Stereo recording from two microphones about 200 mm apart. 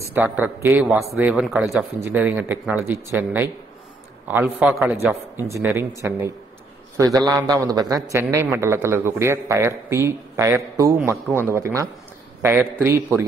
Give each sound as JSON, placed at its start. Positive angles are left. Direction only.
{"t": 0.0, "sound": "a man's voice", "side_deg": -10}